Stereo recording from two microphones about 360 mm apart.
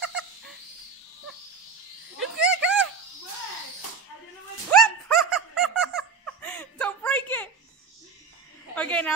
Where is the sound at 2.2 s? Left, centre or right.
Centre.